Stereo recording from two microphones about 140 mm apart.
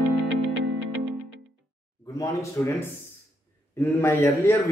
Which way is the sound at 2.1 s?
20° left (ahead or behind).